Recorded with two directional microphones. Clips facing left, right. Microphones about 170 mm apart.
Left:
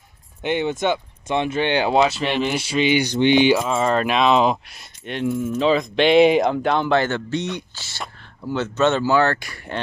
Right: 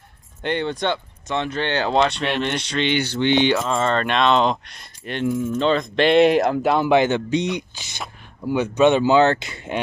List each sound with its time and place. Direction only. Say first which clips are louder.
0.4 s speech: left 2 dB; 10° left (ahead or behind)
6.9 s speech: right 3 dB; 15° right (ahead or behind)